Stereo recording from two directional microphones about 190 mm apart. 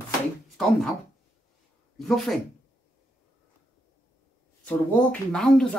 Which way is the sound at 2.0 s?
Centre (ahead or behind).